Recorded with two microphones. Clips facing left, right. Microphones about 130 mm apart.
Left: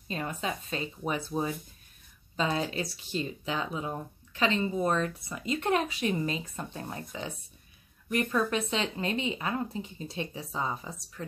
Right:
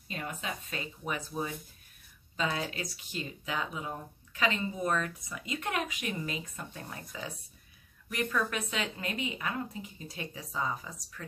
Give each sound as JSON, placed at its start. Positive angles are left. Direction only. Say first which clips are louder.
{"t": 0.1, "sound": "a woman's voice", "louder": "left 5 dB", "side_deg": 35}